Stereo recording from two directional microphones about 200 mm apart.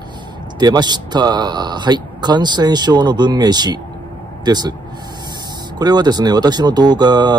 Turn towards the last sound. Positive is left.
turn(degrees=-20)  # may be behind; listen again after turning